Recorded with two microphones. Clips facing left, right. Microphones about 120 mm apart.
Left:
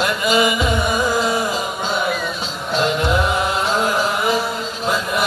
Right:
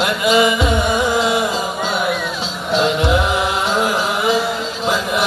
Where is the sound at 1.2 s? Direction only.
75° right (ahead or behind).